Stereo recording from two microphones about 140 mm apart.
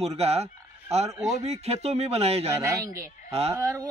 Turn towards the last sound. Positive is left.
turn(degrees=-20)  # may be behind; listen again after turning